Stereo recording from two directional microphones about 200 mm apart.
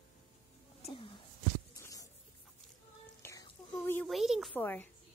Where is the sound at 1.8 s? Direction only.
15° left (ahead or behind).